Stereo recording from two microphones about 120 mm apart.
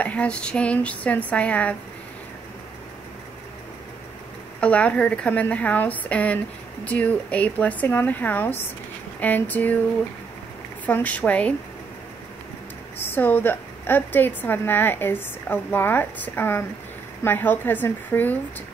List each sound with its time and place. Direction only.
0.0 s a woman's voice: 10° left (ahead or behind)
4.6 s a woman's voice: 10° left (ahead or behind)
10.9 s a woman's voice: 10° left (ahead or behind)
13.0 s a woman's voice: 15° left (ahead or behind)